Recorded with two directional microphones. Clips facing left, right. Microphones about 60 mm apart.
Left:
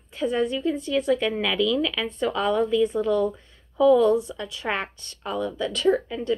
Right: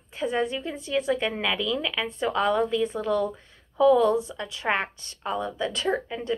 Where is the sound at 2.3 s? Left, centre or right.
Right.